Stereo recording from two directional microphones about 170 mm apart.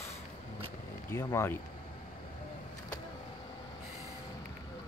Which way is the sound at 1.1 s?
15° left (ahead or behind).